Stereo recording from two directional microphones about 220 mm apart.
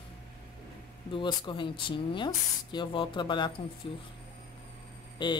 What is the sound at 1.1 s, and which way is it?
Speech, 20° left (ahead or behind).